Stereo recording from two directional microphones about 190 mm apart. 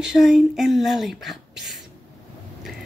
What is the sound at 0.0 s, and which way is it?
A woman's voice, 5° right (ahead or behind).